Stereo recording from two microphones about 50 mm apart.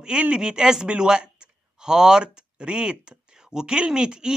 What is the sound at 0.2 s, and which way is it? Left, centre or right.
A man's voice, right.